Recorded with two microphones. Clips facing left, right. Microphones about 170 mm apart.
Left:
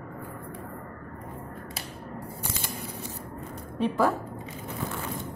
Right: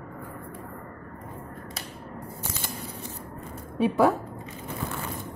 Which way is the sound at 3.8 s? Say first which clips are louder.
Right 3 dB; 10° right (ahead or behind).